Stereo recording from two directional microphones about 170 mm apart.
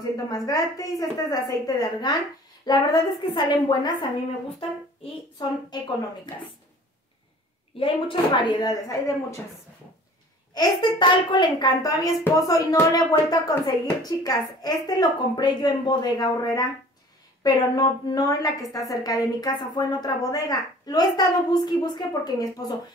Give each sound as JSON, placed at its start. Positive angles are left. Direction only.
{"t": 0.3, "sound": "a child's voice", "side_deg": 20}
{"t": 5.4, "sound": "a child's voice", "side_deg": 25}
{"t": 7.7, "sound": "a child's voice", "side_deg": 30}
{"t": 10.5, "sound": "a child's voice", "side_deg": 25}